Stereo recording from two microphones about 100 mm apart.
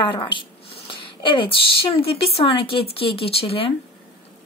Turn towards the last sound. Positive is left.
turn(degrees=75)  # may be behind; listen again after turning